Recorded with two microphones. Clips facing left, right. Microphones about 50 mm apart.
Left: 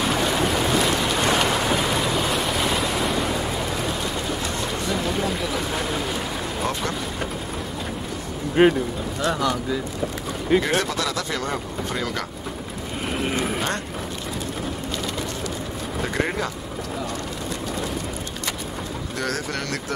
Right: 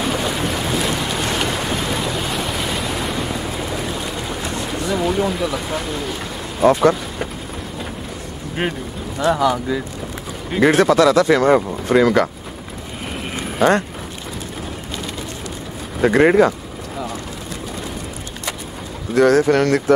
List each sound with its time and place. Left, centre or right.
0.0 s boat: centre
1.7 s waves: centre
4.8 s speech: centre
6.7 s speech: right
8.6 s speech: centre
10.6 s speech: right
13.2 s a sound: centre
13.6 s speech: right
16.0 s speech: right
19.2 s speech: right